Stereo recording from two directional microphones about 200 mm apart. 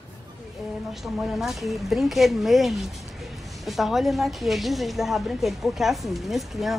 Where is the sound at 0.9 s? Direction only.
Centre (ahead or behind).